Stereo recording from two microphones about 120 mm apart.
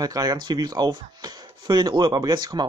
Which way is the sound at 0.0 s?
30° right (ahead or behind).